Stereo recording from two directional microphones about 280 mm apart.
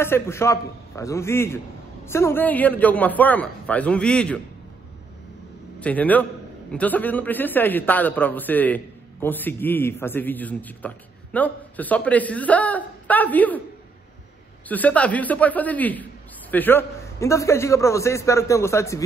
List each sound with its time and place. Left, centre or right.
0.0 s a man's voice: centre
5.8 s a man's voice: centre
14.7 s a man's voice: centre